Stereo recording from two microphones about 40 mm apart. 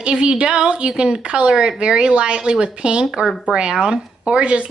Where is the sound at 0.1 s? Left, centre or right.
Right.